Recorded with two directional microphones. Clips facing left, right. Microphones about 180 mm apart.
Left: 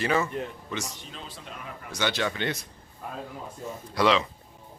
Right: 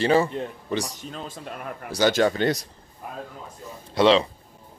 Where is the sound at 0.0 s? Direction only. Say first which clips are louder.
Right 6 dB; 30° right (ahead or behind); by 1.9 s 55° right (ahead or behind).